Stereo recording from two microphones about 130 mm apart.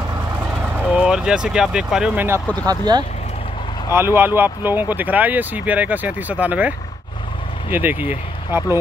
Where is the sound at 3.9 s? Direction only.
20° right (ahead or behind).